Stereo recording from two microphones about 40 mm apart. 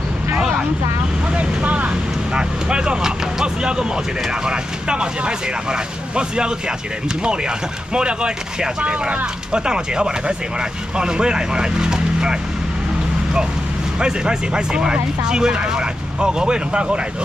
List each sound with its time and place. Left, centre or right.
1.3 s vehicle: right
2.3 s speech: right
13.9 s speech: centre